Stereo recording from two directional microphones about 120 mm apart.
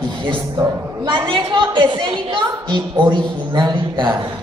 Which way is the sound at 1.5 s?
40° right (ahead or behind).